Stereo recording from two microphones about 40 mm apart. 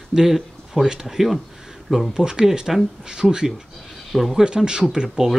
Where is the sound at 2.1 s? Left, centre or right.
Centre.